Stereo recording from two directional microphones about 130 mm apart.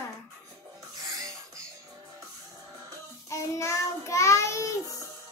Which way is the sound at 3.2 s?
25° left (ahead or behind).